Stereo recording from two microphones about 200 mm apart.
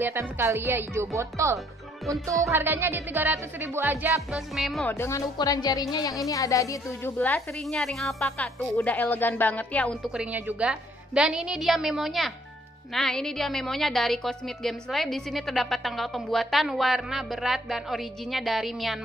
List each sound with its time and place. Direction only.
0.0 s speech: 10° right (ahead or behind)
4.9 s speech: 15° left (ahead or behind)
10.1 s a woman's voice: 5° right (ahead or behind)